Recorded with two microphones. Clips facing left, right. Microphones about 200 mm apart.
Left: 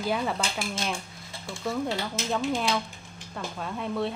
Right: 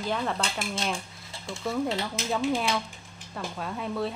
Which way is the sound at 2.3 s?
5° right (ahead or behind).